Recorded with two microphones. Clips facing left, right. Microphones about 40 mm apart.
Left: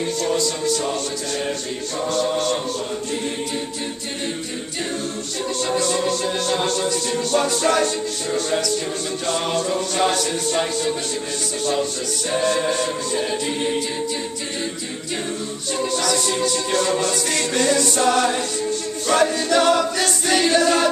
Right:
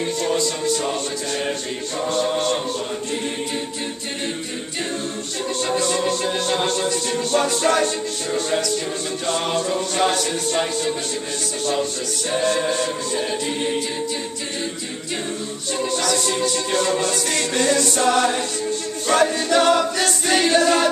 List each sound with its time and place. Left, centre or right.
0.2 s music: centre
2.0 s music: centre
5.6 s music: centre
15.8 s music: centre